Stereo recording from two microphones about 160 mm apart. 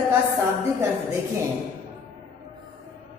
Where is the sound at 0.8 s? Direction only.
15° right (ahead or behind).